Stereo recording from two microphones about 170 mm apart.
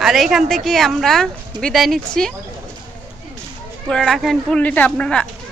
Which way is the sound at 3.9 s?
Centre (ahead or behind).